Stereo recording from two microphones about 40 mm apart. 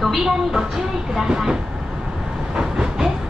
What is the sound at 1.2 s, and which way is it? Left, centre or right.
Vehicle, centre.